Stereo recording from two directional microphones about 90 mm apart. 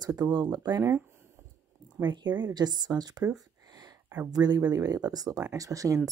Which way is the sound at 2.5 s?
50° right (ahead or behind).